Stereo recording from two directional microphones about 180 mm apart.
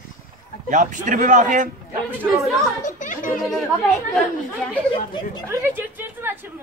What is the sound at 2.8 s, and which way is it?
Music, 45° left (ahead or behind).